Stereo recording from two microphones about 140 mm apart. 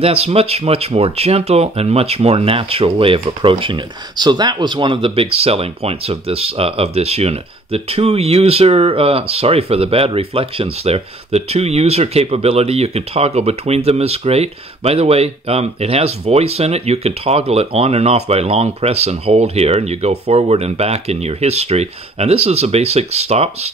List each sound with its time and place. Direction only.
0.0 s speech: 45° right (ahead or behind)